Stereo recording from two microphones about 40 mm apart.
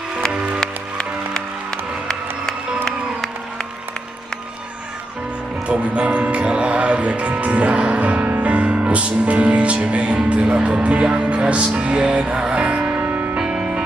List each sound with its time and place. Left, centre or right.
0.3 s music: right
0.6 s music: left
5.7 s speech: right
8.4 s music: right
12.8 s music: right
13.4 s music: right